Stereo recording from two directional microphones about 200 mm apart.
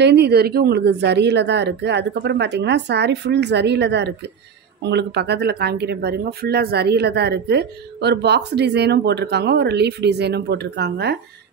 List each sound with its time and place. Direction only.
0.0 s speech: 55° right (ahead or behind)